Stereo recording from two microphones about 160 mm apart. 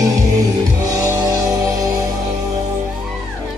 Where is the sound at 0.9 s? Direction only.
20° right (ahead or behind).